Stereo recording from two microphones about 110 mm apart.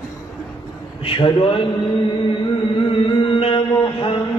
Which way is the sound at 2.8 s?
50° left (ahead or behind).